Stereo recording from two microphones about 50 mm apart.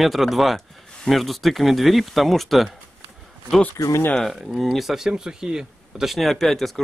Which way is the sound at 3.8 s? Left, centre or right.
Left.